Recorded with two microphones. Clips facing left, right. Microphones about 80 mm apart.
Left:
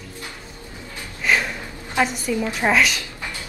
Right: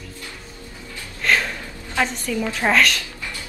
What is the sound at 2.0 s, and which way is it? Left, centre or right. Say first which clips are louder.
Speech: left 2 dB; centre.